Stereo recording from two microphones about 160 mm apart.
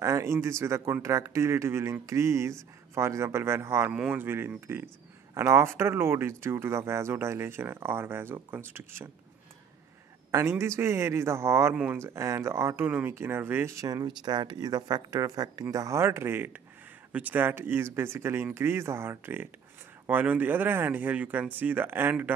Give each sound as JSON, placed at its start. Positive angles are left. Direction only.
{"t": 0.0, "sound": "speech", "side_deg": -20}
{"t": 10.3, "sound": "speech", "side_deg": -15}